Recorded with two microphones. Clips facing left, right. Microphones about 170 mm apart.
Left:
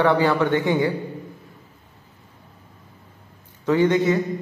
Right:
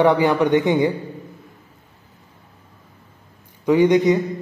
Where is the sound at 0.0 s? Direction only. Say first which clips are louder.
Right 3 dB; 15° right (ahead or behind).